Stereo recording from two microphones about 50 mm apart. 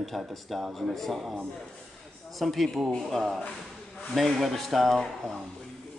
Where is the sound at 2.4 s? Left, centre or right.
Centre.